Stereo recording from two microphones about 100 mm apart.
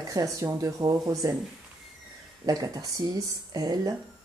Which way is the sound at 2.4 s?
35° right (ahead or behind).